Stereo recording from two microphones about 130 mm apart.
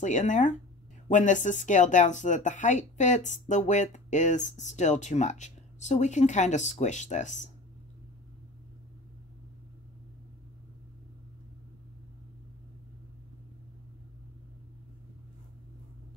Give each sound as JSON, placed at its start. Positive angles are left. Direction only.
{"t": 0.0, "sound": "speech", "side_deg": 70}